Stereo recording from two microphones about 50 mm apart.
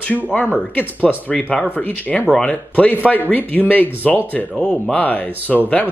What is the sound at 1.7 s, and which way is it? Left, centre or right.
Speech, left.